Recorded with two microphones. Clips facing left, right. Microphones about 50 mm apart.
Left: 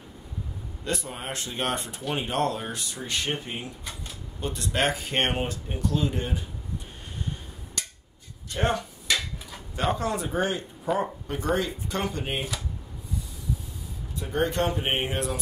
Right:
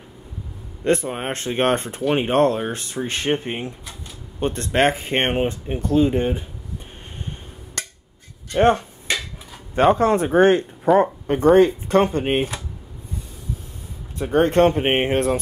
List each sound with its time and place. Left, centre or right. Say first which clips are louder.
0.8 s speech: right 11 dB; right
7.8 s a sound: right 6 dB; right
9.8 s speech: right 11 dB; right
14.1 s speech: right 10 dB; right